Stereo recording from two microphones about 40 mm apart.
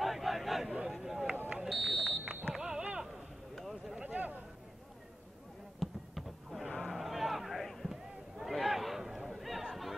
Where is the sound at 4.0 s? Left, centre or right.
Right.